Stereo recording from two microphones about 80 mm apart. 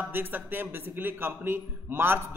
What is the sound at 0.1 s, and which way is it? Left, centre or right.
A man's voice, right.